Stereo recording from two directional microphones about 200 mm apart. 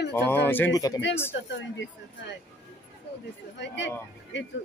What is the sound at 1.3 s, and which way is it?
Speech, 65° left (ahead or behind).